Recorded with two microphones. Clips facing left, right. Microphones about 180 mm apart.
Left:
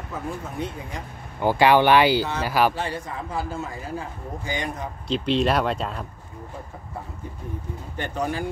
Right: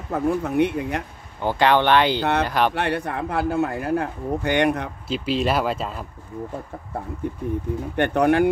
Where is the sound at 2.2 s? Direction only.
65° right (ahead or behind).